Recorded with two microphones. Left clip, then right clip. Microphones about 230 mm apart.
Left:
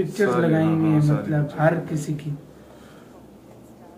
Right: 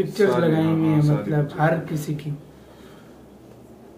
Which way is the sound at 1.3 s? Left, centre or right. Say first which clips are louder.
Left 1 dB; centre.